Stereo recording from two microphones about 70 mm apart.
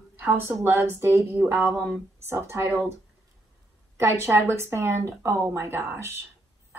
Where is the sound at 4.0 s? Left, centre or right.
Right.